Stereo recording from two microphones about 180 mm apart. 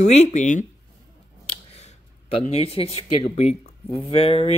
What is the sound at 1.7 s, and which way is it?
Speech, 35° left (ahead or behind).